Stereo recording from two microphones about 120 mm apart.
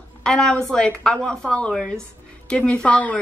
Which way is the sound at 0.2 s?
5° left (ahead or behind).